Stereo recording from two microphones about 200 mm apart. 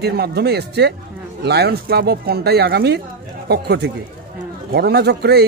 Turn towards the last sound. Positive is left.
turn(degrees=-55)  # may be behind; listen again after turning